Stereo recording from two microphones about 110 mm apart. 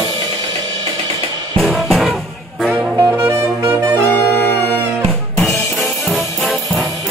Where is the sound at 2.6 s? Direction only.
10° right (ahead or behind).